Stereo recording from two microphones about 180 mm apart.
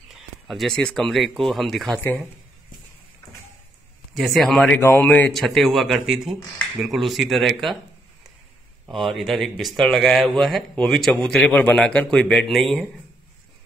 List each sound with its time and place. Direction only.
0.5 s speech: centre (ahead or behind)
4.1 s speech: centre (ahead or behind)
8.8 s speech: centre (ahead or behind)